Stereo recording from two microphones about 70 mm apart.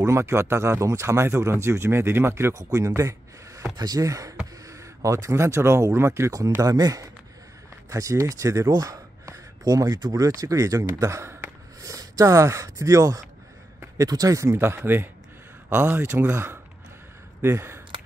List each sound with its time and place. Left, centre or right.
0.0 s speech: right
3.0 s a sound: right
3.7 s speech: right
6.6 s speech: right
7.9 s speech: right
8.7 s speech: right
11.8 s speech: right